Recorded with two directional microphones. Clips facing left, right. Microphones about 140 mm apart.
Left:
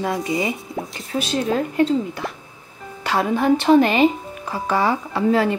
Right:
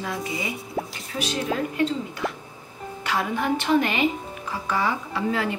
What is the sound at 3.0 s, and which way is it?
Speech, 35° left (ahead or behind).